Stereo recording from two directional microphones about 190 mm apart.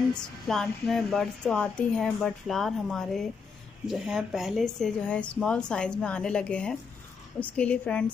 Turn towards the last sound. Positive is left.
turn(degrees=5)  # may be behind; listen again after turning